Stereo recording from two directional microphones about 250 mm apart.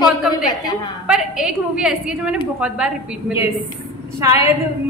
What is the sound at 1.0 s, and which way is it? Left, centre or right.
A woman's voice, centre.